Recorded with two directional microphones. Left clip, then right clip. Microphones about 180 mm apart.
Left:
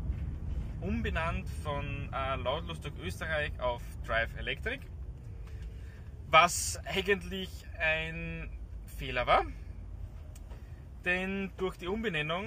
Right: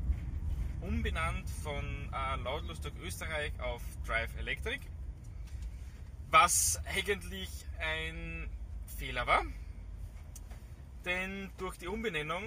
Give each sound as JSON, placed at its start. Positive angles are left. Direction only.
{"t": 0.8, "sound": "speech", "side_deg": 20}
{"t": 6.3, "sound": "speech", "side_deg": 15}
{"t": 11.1, "sound": "speech", "side_deg": 20}